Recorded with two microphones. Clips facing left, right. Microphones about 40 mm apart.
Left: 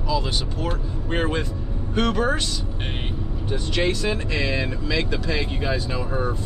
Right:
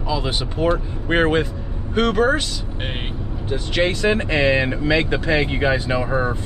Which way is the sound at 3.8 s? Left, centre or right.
Right.